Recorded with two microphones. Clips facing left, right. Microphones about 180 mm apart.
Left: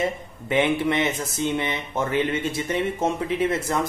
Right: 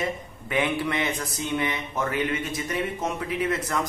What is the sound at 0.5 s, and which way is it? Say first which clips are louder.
Speech: left 4 dB; 25° left (ahead or behind).